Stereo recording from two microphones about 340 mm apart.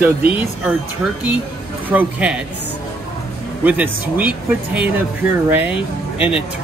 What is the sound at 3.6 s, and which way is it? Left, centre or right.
Speech, centre.